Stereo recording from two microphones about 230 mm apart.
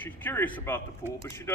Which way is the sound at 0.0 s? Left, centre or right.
Centre.